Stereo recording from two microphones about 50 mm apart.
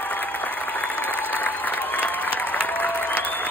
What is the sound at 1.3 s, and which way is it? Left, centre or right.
Applause, left.